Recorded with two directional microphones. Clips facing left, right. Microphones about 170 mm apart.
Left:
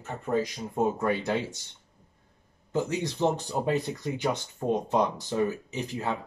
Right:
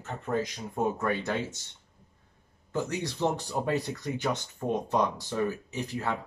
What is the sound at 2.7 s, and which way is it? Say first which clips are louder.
Speech: left 3 dB; 15° left (ahead or behind).